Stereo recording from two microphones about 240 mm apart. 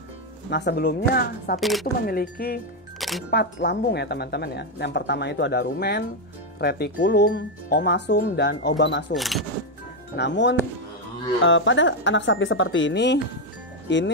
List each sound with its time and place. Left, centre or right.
0.5 s speech: left
1.6 s speech: centre
2.0 s speech: left
3.0 s music: centre
3.3 s speech: left
9.1 s speech: centre
10.1 s speech: left